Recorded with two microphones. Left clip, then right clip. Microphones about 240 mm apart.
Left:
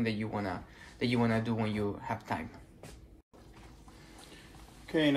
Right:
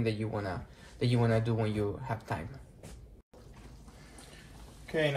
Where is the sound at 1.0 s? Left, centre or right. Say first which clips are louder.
Right 1 dB; left.